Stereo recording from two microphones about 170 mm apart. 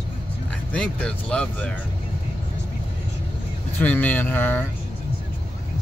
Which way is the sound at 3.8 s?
10° left (ahead or behind).